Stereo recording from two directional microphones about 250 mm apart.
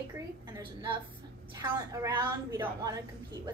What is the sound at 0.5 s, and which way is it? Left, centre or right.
A woman's voice, centre.